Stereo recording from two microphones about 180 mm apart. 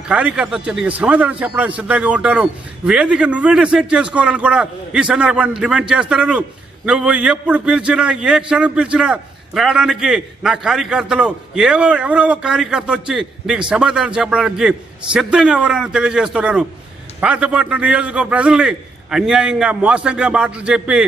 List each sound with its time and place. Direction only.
0.1 s a man's voice: 5° right (ahead or behind)